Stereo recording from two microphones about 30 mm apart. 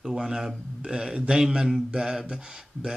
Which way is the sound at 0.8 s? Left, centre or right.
Centre.